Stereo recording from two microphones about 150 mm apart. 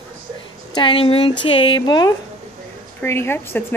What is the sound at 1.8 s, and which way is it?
A woman's voice, 25° left (ahead or behind).